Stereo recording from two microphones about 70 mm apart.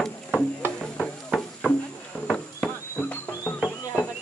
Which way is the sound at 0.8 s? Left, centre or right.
Centre.